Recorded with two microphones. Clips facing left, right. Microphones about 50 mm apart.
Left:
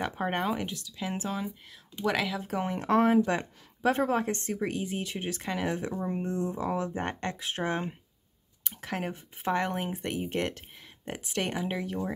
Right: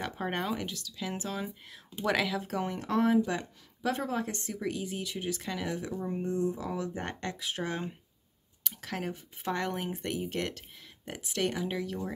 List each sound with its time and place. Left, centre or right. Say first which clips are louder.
0.0 s speech: left 4 dB; centre
1.4 s speech: left 2 dB; centre
2.8 s a woman's voice: left 4 dB; left